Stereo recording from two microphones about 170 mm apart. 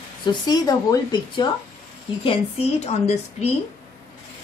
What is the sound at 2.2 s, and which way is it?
A woman's voice, 35° left (ahead or behind).